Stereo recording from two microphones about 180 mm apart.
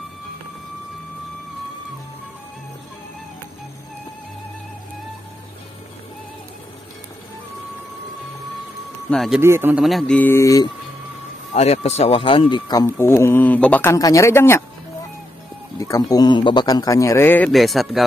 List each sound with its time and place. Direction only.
9.1 s speech: centre (ahead or behind)
9.4 s a man's voice: 15° right (ahead or behind)
9.8 s speech: centre (ahead or behind)
11.5 s speech: 40° left (ahead or behind); by 14.6 s 15° left (ahead or behind)
15.8 s speech: 20° left (ahead or behind)
17.5 s speech: centre (ahead or behind)